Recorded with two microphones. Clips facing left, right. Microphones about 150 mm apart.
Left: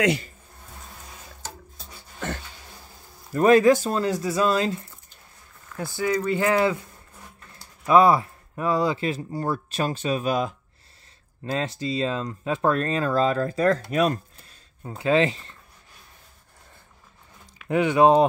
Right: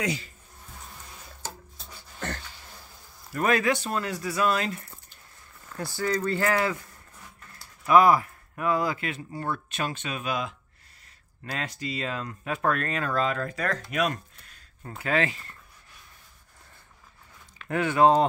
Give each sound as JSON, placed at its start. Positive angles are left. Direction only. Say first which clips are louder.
{"t": 3.3, "sound": "speech", "louder": "left 8 dB", "side_deg": 35}
{"t": 5.8, "sound": "speech", "louder": "left 3 dB", "side_deg": 15}
{"t": 7.8, "sound": "speech", "louder": "left 2 dB", "side_deg": 25}
{"t": 11.4, "sound": "speech", "louder": "left 7 dB", "side_deg": 25}
{"t": 14.8, "sound": "speech", "louder": "left 6 dB", "side_deg": 20}
{"t": 17.6, "sound": "speech", "louder": "left 3 dB", "side_deg": 15}